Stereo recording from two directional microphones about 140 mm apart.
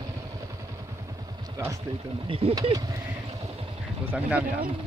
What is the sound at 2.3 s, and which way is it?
Speech, 40° right (ahead or behind).